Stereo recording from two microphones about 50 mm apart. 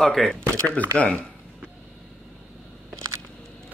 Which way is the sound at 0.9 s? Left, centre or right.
Left.